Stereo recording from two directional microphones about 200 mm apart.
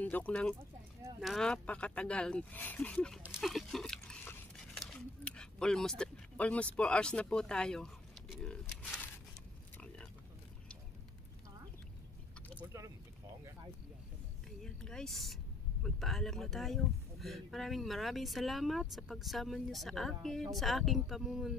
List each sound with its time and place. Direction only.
0.0 s speech: 5° left (ahead or behind)
12.5 s vehicle: 15° right (ahead or behind)
14.6 s vehicle: centre (ahead or behind)
15.8 s speech: centre (ahead or behind)